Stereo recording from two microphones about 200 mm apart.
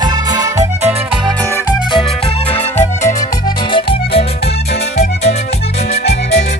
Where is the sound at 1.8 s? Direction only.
25° left (ahead or behind).